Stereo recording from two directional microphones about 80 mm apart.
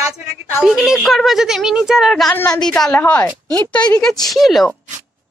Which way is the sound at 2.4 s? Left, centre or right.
Centre.